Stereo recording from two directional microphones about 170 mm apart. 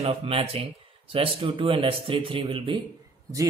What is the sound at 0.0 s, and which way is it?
Speech, 35° right (ahead or behind).